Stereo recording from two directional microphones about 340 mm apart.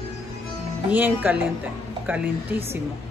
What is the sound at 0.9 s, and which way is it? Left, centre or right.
A woman's voice, centre.